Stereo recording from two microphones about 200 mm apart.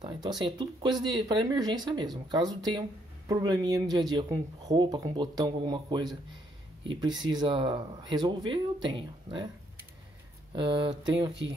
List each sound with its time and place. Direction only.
0.0 s a sound: 25° right (ahead or behind)
0.4 s speech: 20° right (ahead or behind)
10.5 s speech: 25° right (ahead or behind)